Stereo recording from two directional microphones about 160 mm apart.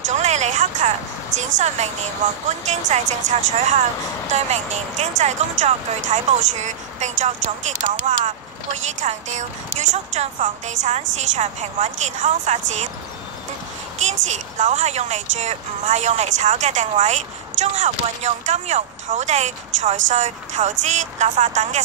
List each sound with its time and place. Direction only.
0.1 s a sound: 45° right (ahead or behind)
2.7 s a woman's voice: 45° right (ahead or behind)
9.0 s a woman's voice: 50° right (ahead or behind)
13.9 s a woman's voice: 50° right (ahead or behind)